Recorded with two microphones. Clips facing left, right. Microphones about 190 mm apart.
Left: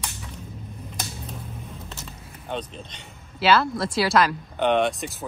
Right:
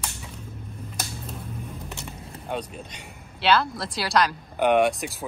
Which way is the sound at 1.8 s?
15° right (ahead or behind).